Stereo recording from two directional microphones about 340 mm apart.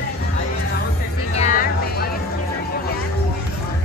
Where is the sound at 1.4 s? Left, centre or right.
Left.